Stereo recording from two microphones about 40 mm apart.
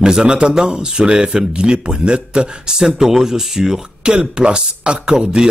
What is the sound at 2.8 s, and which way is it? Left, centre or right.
Speech, centre.